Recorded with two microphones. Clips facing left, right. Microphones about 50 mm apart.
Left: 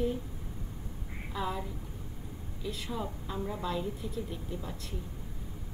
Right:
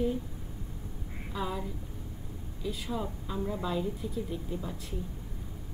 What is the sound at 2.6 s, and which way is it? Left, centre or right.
A woman's voice, centre.